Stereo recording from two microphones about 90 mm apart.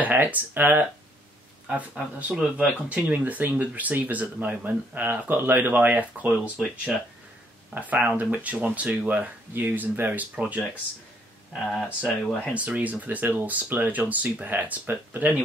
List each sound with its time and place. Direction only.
0.0 s speech: 20° right (ahead or behind)
7.7 s speech: 20° right (ahead or behind)
11.5 s speech: centre (ahead or behind)
12.5 s speech: 15° right (ahead or behind)